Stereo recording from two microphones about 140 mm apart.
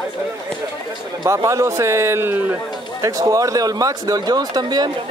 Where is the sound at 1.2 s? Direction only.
25° right (ahead or behind).